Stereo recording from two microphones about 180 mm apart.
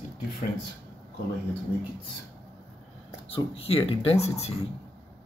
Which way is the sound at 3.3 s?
30° left (ahead or behind).